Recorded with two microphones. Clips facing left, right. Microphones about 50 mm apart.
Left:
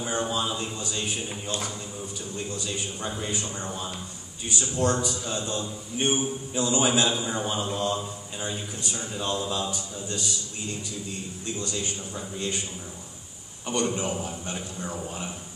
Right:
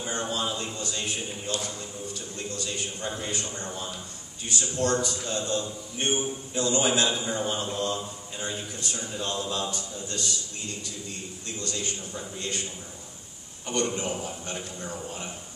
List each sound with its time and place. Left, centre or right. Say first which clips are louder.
0.0 s a sound: left 2 dB; centre
4.5 s a man's voice: left 1 dB; centre
11.4 s a man's voice: left 2 dB; centre
13.7 s a man's voice: left 1 dB; centre